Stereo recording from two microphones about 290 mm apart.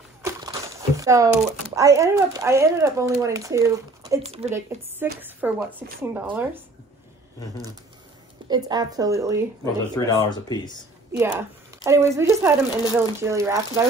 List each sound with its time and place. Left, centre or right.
0.2 s speech: centre
4.2 s a woman's voice: right
4.6 s speech: centre
8.5 s speech: centre
9.9 s speech: centre
11.1 s a woman's voice: centre